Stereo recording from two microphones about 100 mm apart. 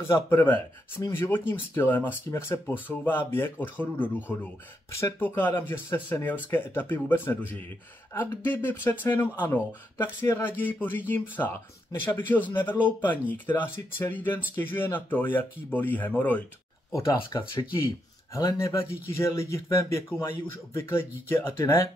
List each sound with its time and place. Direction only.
0.1 s speech: 20° left (ahead or behind)
4.9 s speech: 25° left (ahead or behind)
16.9 s speech: 35° left (ahead or behind)